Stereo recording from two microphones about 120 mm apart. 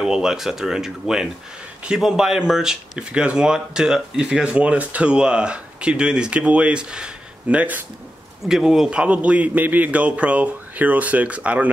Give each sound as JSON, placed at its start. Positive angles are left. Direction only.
{"t": 0.0, "sound": "speech", "side_deg": -5}